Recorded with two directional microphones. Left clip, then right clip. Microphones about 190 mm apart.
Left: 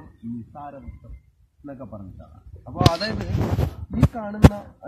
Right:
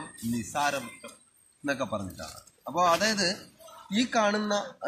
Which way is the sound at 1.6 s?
25° right (ahead or behind).